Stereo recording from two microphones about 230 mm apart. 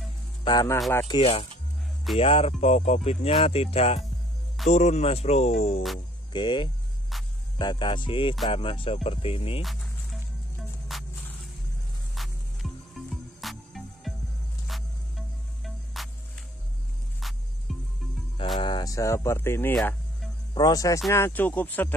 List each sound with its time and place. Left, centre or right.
0.4 s speech: centre
10.9 s music: centre
18.6 s speech: centre
20.5 s speech: centre